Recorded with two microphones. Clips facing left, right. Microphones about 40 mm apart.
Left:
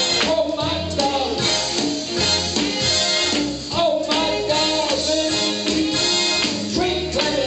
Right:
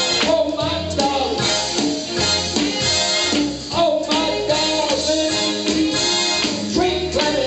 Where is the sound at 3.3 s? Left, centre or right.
Centre.